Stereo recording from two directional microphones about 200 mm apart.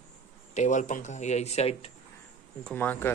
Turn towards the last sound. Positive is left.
turn(degrees=10)  # may be behind; listen again after turning